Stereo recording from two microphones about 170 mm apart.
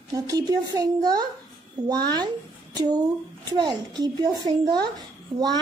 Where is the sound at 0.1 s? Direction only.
20° right (ahead or behind).